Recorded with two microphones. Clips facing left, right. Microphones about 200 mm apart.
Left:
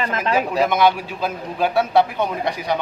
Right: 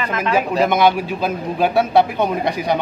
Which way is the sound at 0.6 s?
15° right (ahead or behind).